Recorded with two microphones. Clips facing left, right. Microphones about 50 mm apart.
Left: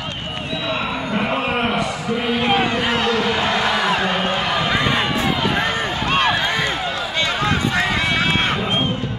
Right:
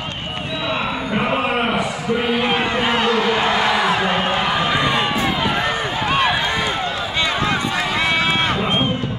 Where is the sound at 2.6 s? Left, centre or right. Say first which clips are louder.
Right 1 dB; centre.